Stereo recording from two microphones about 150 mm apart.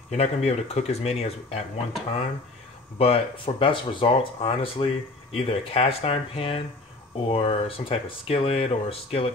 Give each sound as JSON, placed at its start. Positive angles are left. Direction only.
{"t": 0.1, "sound": "speech", "side_deg": 45}
{"t": 3.0, "sound": "speech", "side_deg": 40}